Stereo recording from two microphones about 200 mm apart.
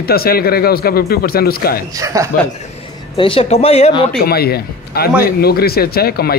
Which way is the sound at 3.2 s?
25° left (ahead or behind).